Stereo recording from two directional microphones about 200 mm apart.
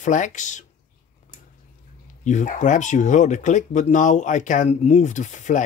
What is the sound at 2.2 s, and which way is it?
Speech, 35° left (ahead or behind).